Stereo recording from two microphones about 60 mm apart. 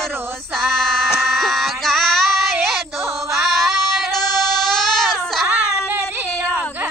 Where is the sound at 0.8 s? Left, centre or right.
Centre.